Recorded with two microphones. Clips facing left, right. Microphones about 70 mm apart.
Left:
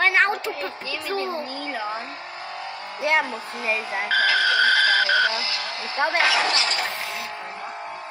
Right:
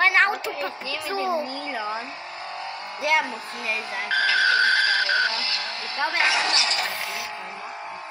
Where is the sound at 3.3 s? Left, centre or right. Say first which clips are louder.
Left 3 dB; left.